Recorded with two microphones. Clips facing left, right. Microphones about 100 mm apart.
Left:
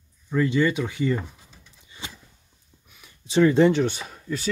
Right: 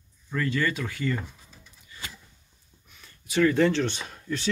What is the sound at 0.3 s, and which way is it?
Speech, 20° left (ahead or behind).